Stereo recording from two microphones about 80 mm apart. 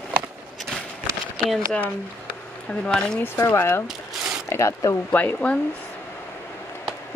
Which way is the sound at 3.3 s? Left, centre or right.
Left.